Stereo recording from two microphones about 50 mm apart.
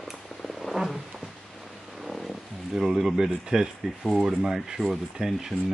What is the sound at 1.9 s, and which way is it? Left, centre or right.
Speech, centre.